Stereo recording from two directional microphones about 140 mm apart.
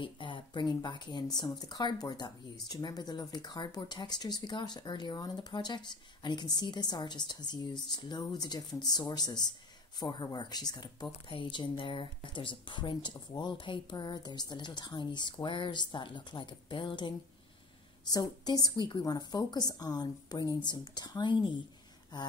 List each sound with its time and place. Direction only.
0.0 s a woman's voice: 35° left (ahead or behind)